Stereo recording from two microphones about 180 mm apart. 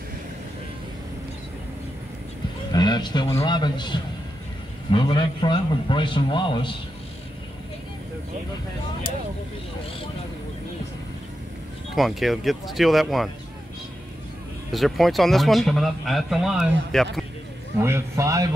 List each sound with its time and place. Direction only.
2.7 s a man's voice: 25° left (ahead or behind)
11.9 s a man's voice: centre (ahead or behind)
14.7 s a man's voice: centre (ahead or behind)
17.7 s a man's voice: 15° right (ahead or behind)